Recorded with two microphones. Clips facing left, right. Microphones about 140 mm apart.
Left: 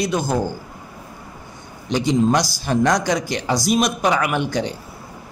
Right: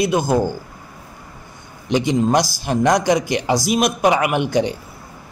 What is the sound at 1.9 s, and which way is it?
Speech, 60° right (ahead or behind).